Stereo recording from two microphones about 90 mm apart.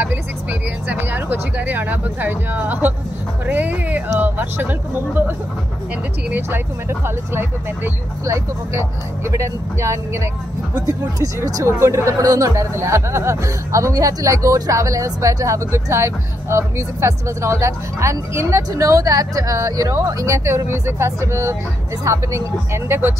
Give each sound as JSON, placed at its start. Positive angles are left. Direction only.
{"t": 0.0, "sound": "speech", "side_deg": -20}
{"t": 6.3, "sound": "speech", "side_deg": -25}